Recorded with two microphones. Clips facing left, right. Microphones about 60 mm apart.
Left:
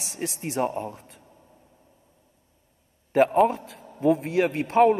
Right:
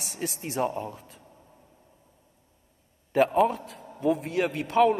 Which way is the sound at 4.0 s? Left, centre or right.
Left.